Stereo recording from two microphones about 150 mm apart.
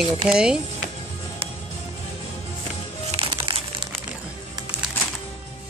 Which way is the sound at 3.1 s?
40° right (ahead or behind).